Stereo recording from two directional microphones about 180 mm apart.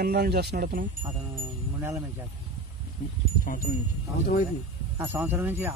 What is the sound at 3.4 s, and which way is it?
Speech, 50° left (ahead or behind).